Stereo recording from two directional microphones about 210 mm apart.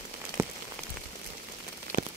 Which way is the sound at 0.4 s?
10° right (ahead or behind).